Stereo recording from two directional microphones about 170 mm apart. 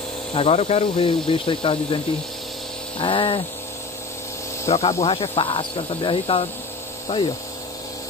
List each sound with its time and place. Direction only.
0.3 s speech: 35° left (ahead or behind)
3.0 s speech: 30° left (ahead or behind)
4.6 s speech: 40° left (ahead or behind)